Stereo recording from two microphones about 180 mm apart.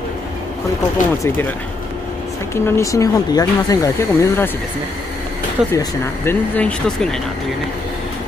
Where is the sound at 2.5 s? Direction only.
15° left (ahead or behind).